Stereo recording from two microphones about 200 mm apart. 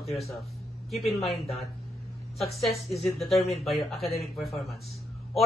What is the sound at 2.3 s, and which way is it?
A woman's voice, centre (ahead or behind).